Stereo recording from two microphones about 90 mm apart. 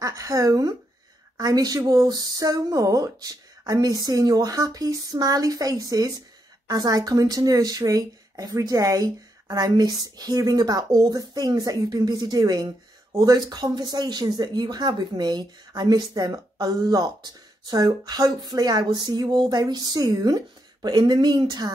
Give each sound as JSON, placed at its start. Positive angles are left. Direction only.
{"t": 0.0, "sound": "a woman's voice", "side_deg": -35}